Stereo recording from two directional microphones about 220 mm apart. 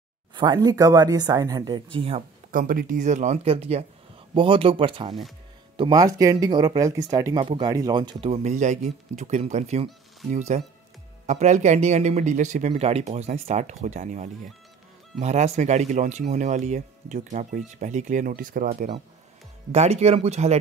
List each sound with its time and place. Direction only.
0.3 s speech: 20° right (ahead or behind)
2.5 s speech: 40° right (ahead or behind)